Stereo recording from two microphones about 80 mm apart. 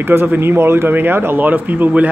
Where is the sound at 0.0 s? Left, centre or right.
Right.